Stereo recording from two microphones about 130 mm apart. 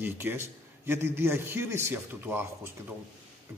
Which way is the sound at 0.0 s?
15° right (ahead or behind).